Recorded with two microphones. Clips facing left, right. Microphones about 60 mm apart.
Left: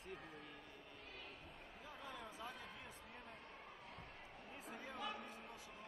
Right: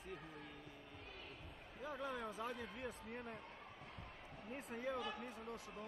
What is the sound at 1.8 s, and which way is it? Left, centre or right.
Speech, right.